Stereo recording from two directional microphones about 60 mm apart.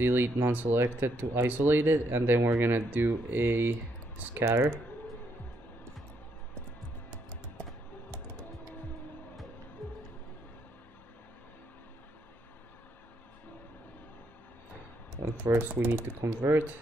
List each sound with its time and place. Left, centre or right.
0.0 s speech: right
9.8 s music: centre
15.4 s speech: right